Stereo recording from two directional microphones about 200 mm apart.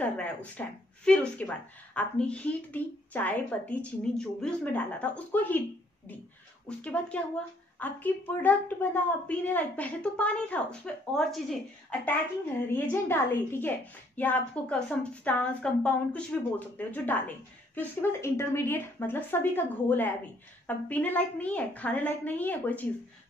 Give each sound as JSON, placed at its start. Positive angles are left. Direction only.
{"t": 0.0, "sound": "a woman's voice", "side_deg": 5}
{"t": 6.8, "sound": "a woman's voice", "side_deg": 5}
{"t": 12.6, "sound": "a woman's voice", "side_deg": 10}